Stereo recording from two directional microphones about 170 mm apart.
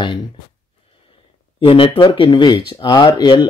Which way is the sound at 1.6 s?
35° left (ahead or behind).